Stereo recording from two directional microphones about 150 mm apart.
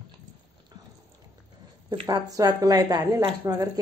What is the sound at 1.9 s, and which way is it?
A woman's voice, 30° right (ahead or behind).